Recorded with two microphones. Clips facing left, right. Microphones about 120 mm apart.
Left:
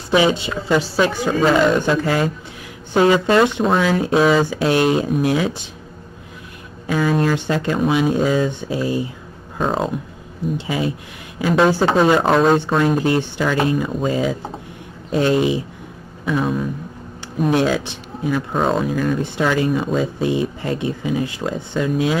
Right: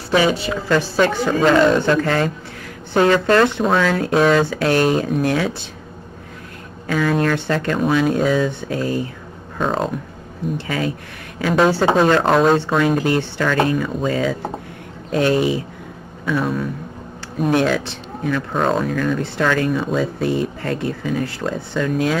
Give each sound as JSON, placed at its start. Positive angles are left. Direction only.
{"t": 0.1, "sound": "speech", "side_deg": 20}
{"t": 6.9, "sound": "speech", "side_deg": 10}
{"t": 11.3, "sound": "speech", "side_deg": 5}
{"t": 17.6, "sound": "speech", "side_deg": 10}
{"t": 18.9, "sound": "speech", "side_deg": 15}